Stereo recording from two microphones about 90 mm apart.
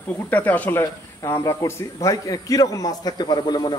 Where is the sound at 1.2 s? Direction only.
40° left (ahead or behind).